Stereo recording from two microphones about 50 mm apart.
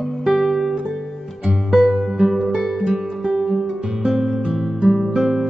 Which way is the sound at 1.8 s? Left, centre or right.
Centre.